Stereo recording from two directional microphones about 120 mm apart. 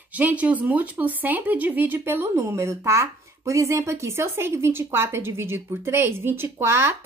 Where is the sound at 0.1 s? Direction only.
10° right (ahead or behind).